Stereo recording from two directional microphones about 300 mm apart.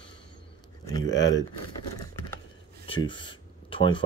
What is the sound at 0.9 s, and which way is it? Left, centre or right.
Speech, centre.